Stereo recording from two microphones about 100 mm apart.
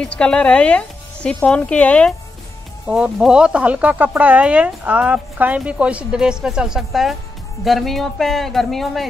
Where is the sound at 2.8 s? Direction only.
10° right (ahead or behind).